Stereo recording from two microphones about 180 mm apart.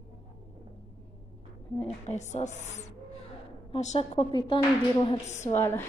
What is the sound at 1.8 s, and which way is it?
Speech, 40° left (ahead or behind).